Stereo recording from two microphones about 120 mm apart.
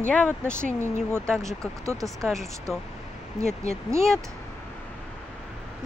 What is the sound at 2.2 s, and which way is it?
Speech, 5° left (ahead or behind).